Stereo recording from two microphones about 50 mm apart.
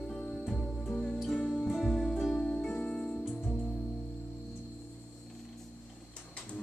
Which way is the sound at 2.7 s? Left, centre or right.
Left.